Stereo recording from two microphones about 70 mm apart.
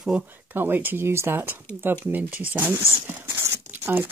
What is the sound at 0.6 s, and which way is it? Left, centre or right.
Speech, right.